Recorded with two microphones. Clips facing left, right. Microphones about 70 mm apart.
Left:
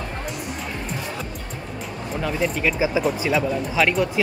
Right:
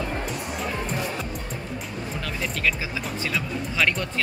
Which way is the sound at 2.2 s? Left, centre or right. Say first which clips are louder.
Left 6 dB; centre.